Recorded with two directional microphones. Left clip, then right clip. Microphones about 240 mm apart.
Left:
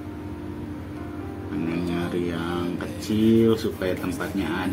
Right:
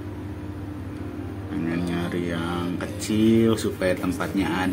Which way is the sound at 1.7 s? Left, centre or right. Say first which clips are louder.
Left 1 dB; centre.